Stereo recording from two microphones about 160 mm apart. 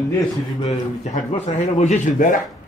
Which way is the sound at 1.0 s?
50° left (ahead or behind).